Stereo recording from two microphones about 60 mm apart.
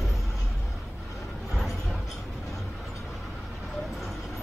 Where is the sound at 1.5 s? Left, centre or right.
Centre.